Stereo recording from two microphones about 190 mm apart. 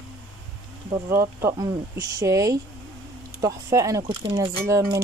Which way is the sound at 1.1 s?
15° right (ahead or behind).